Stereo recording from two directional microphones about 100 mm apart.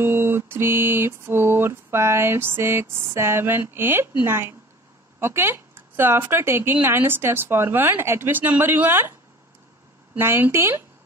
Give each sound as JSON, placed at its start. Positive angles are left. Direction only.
{"t": 0.0, "sound": "mantra", "side_deg": -25}
{"t": 10.1, "sound": "mantra", "side_deg": -25}